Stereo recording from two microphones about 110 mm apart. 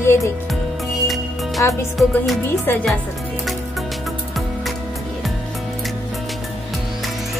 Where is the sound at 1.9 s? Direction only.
Centre (ahead or behind).